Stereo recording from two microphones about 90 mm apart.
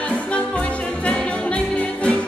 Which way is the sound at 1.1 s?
15° left (ahead or behind).